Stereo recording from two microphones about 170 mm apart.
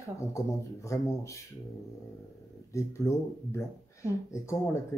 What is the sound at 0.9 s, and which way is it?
Speech, 15° left (ahead or behind).